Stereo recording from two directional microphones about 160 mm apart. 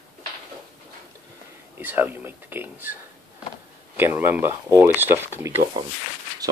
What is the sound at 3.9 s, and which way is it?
Speech, 15° right (ahead or behind).